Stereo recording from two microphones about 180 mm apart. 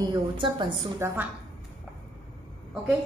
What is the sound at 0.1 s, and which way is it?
Speech, 25° right (ahead or behind).